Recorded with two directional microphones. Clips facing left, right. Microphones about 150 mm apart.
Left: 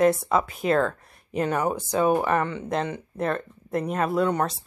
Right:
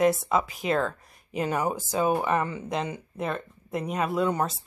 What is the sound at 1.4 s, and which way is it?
A woman's voice, 10° right (ahead or behind).